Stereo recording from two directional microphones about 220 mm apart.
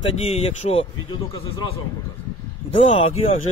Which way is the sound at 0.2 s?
25° left (ahead or behind).